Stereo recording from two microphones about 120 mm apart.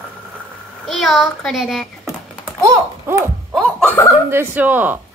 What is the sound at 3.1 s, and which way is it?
Horse, 20° right (ahead or behind).